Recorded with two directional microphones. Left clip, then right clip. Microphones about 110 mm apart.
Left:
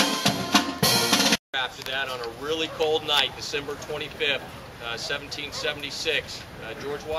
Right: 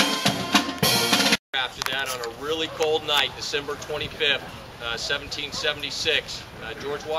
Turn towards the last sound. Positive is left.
turn(degrees=0)  # may be behind; listen again after turning